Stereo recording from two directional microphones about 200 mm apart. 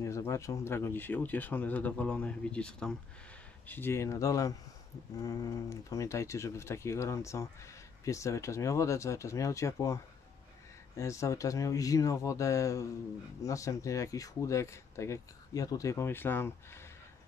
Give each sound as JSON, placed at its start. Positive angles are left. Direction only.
{"t": 0.0, "sound": "speech", "side_deg": 15}
{"t": 11.0, "sound": "speech", "side_deg": 15}